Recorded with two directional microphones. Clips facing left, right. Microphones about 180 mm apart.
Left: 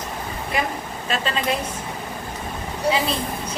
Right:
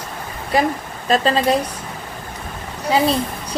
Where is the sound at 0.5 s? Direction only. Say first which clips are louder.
Right 8 dB; 35° right (ahead or behind).